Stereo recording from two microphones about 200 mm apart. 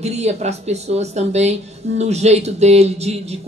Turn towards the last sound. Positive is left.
turn(degrees=-30)  # may be behind; listen again after turning